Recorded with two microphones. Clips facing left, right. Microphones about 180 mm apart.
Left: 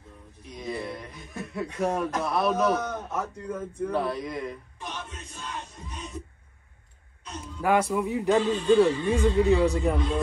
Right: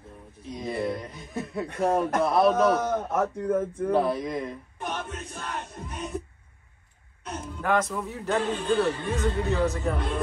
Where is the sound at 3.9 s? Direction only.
25° right (ahead or behind).